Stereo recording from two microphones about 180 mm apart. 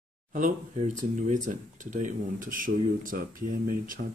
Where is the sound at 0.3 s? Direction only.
45° right (ahead or behind).